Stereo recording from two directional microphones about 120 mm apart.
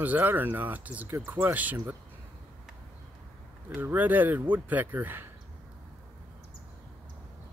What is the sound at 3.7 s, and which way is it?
Speech, 15° right (ahead or behind).